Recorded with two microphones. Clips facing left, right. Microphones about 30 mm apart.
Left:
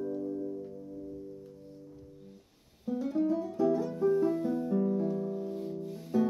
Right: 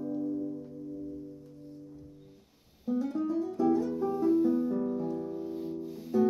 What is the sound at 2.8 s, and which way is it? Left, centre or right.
Music, centre.